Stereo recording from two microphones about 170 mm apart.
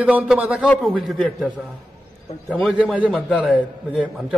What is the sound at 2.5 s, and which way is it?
Speech, 5° right (ahead or behind).